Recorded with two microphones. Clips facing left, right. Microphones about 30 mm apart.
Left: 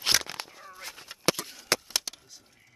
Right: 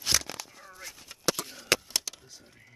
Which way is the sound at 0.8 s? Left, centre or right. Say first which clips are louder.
Left 2 dB; left.